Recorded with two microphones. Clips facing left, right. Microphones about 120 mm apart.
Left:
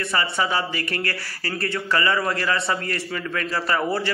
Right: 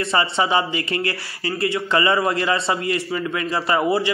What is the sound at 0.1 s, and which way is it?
A man's voice, 20° right (ahead or behind).